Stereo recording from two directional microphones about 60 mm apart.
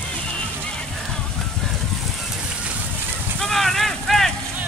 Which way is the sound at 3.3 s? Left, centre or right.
Centre.